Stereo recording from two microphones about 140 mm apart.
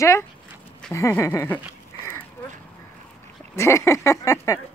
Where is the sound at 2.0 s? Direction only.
15° left (ahead or behind).